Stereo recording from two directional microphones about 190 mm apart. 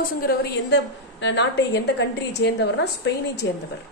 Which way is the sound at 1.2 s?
65° left (ahead or behind).